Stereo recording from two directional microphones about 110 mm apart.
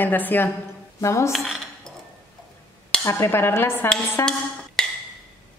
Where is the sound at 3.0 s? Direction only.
20° left (ahead or behind).